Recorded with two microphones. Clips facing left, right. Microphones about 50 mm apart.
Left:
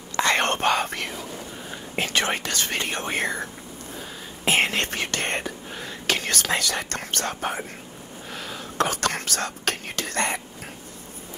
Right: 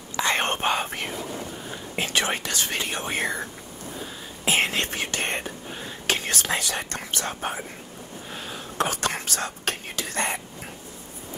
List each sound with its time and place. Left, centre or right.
0.1 s whispering: left
2.0 s speech: left
4.5 s whispering: left
6.1 s speech: left
8.3 s a sound: left
8.7 s speech: left